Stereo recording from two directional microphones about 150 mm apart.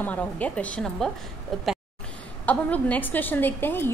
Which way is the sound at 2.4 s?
10° left (ahead or behind).